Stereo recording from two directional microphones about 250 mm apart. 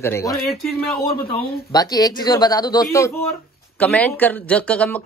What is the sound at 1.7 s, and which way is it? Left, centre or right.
Speech, centre.